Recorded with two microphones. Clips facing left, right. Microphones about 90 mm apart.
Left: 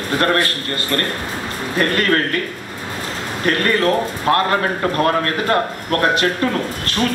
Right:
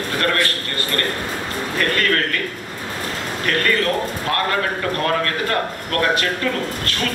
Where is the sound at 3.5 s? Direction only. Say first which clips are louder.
Left 3 dB; 30° left (ahead or behind).